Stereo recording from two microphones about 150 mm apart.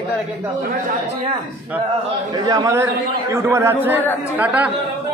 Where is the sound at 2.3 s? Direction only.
25° right (ahead or behind); by 4.7 s 10° right (ahead or behind).